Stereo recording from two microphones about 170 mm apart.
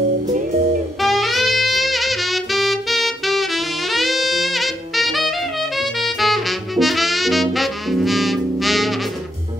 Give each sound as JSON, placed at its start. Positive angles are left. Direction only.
{"t": 1.0, "sound": "saxophone", "side_deg": 0}